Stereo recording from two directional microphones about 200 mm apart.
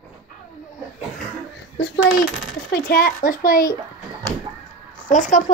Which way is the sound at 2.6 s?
50° left (ahead or behind).